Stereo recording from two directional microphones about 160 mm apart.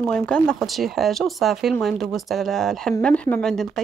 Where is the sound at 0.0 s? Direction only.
5° left (ahead or behind).